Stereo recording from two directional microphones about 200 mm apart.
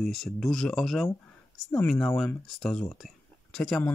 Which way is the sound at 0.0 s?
Centre (ahead or behind).